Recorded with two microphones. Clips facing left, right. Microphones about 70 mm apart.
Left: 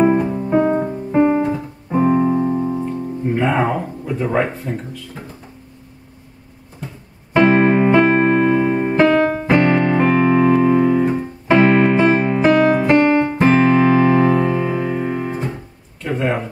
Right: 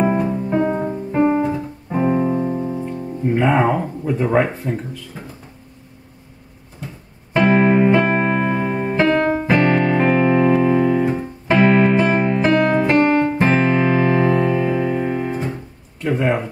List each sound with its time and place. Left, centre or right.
0.2 s music: centre
4.4 s speech: centre
7.4 s music: centre
7.9 s music: left
8.2 s music: centre
9.1 s piano: centre
11.4 s music: centre
16.0 s a sound: centre